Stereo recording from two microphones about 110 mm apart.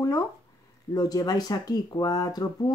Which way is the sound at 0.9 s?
35° left (ahead or behind).